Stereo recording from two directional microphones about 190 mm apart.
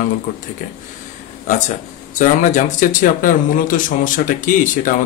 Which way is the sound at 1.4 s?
35° left (ahead or behind).